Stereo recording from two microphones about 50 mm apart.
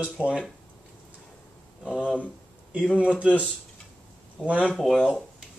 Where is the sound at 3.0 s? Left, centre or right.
Right.